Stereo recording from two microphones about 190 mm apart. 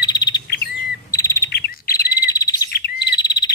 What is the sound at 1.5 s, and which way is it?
Bird, 55° left (ahead or behind).